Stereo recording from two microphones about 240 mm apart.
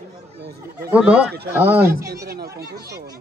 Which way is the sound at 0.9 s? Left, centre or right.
Centre.